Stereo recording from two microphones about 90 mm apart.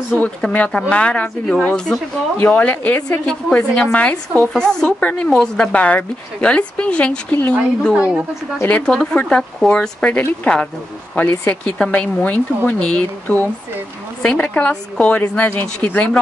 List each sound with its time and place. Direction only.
0.2 s a woman's voice: 15° left (ahead or behind)
7.9 s a woman's voice: 10° right (ahead or behind)
8.6 s a woman's voice: 10° left (ahead or behind)